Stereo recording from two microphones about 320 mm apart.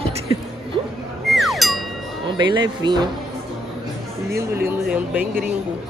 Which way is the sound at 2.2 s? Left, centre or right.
Centre.